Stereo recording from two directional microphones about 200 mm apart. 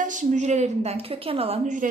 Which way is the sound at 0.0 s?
40° right (ahead or behind).